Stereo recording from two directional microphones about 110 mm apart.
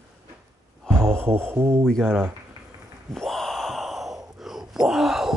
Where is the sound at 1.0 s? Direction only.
20° right (ahead or behind).